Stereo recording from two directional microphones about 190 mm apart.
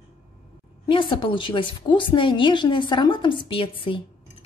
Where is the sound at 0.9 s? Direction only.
25° left (ahead or behind).